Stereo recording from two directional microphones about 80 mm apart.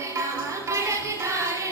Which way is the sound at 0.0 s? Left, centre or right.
Right.